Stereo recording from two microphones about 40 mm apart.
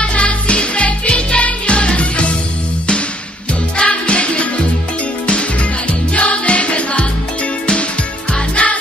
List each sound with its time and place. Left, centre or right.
0.0 s music: left
3.7 s music: left
8.3 s music: left